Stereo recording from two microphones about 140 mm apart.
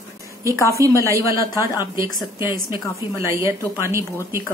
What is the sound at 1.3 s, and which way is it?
Speech, 25° left (ahead or behind).